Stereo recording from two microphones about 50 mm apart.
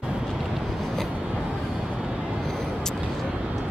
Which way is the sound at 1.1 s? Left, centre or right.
Right.